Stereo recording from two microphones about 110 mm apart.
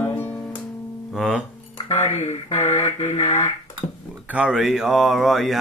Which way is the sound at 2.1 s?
85° left.